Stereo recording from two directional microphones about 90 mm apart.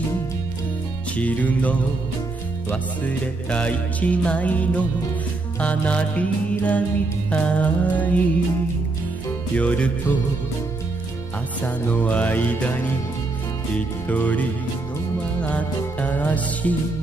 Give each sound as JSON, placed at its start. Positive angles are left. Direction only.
{"t": 1.1, "sound": "music", "side_deg": 15}
{"t": 9.6, "sound": "music", "side_deg": 15}
{"t": 11.6, "sound": "music", "side_deg": 15}